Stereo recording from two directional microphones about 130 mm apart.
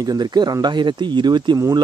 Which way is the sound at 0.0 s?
30° right (ahead or behind).